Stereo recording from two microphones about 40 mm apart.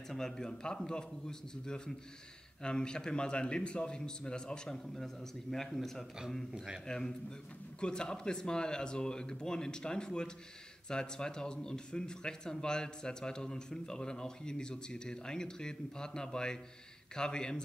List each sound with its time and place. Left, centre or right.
0.1 s a man's voice: centre
6.5 s a man's voice: right
6.9 s a man's voice: centre